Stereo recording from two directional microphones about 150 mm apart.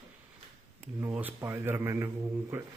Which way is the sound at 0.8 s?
15° right (ahead or behind).